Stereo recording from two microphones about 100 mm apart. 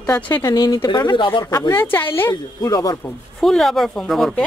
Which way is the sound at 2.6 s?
40° left (ahead or behind).